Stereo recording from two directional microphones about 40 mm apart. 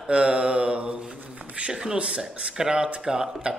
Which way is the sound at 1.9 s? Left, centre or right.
Right.